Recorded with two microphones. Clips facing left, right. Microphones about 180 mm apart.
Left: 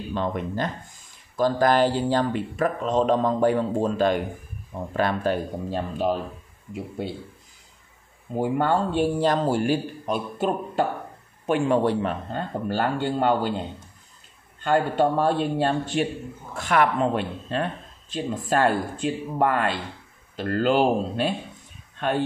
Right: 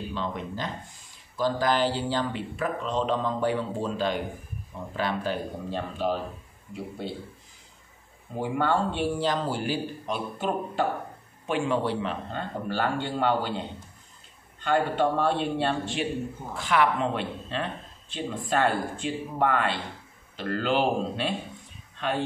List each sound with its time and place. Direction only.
0.1 s speech: 50° left (ahead or behind)
8.4 s speech: 45° left (ahead or behind)